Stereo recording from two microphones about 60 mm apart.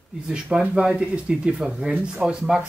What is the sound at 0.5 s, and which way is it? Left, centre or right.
Speech, centre.